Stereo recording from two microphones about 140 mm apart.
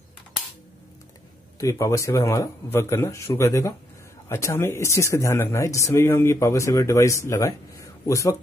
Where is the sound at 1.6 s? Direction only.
20° left (ahead or behind).